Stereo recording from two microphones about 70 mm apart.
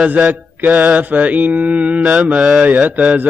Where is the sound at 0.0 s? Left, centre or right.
Centre.